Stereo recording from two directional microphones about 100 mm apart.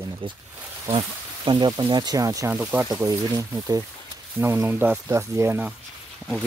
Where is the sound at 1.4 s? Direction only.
50° right (ahead or behind); by 5.7 s 25° right (ahead or behind).